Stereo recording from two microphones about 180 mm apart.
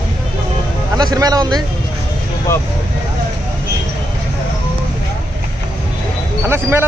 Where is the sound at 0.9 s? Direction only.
20° right (ahead or behind).